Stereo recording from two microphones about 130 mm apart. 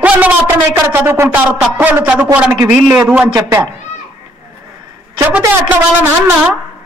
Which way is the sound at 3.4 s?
25° right (ahead or behind).